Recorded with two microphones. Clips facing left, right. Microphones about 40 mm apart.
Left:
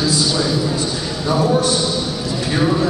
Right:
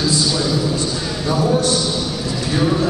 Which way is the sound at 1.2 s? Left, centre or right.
Centre.